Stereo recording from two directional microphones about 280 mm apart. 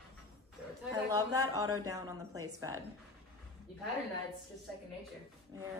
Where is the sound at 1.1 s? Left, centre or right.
Centre.